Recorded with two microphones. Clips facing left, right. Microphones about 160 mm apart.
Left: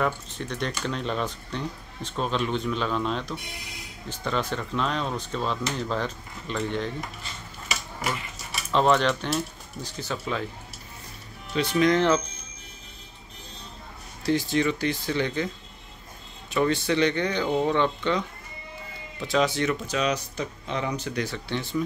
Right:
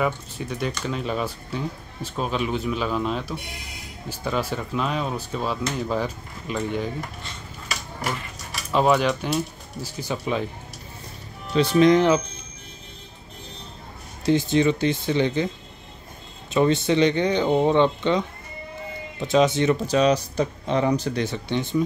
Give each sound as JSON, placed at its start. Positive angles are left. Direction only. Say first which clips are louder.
{"t": 0.0, "sound": "speech", "louder": "right 2 dB", "side_deg": -5}
{"t": 8.7, "sound": "speech", "louder": "right 2 dB", "side_deg": -10}
{"t": 11.5, "sound": "speech", "louder": "right 6 dB", "side_deg": -30}
{"t": 11.9, "sound": "speech", "louder": "right 4 dB", "side_deg": -15}
{"t": 14.2, "sound": "speech", "louder": "right 4 dB", "side_deg": -20}